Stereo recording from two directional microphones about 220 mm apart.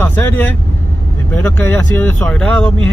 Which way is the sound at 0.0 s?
10° left (ahead or behind).